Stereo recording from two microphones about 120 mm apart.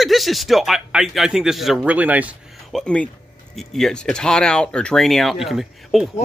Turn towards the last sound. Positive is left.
turn(degrees=0)  # may be behind; listen again after turning